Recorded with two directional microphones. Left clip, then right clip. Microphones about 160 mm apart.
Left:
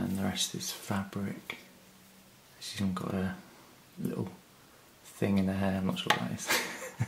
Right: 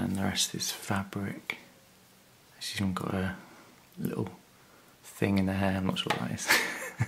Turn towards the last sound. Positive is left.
turn(degrees=-35)  # may be behind; listen again after turning